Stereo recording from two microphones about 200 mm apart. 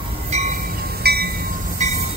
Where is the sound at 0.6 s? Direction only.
45° right (ahead or behind).